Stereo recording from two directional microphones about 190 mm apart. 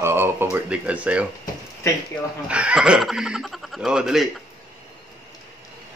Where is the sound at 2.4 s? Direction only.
5° right (ahead or behind).